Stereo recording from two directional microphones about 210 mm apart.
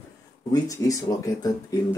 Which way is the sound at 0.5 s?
15° left (ahead or behind).